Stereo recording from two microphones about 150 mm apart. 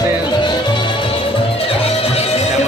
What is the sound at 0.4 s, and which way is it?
Music, 30° left (ahead or behind).